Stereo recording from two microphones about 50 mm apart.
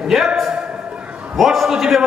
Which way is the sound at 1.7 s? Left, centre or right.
Centre.